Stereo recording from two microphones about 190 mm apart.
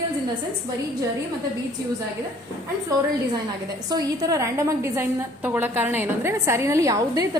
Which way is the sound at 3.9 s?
20° right (ahead or behind).